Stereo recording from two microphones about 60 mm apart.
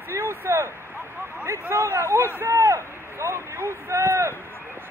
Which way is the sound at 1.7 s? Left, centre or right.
Right.